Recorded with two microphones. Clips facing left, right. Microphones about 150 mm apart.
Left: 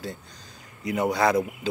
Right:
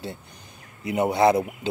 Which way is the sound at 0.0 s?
25° right (ahead or behind).